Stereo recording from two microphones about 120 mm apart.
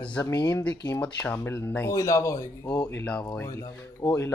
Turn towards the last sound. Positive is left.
turn(degrees=25)  # may be behind; listen again after turning